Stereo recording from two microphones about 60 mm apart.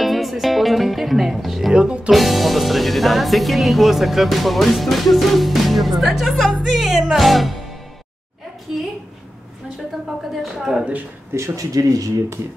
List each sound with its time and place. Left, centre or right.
0.0 s speech: centre
1.7 s a woman's voice: centre
2.0 s speech: centre
10.4 s a woman's voice: centre
11.3 s speech: right
11.7 s speech: right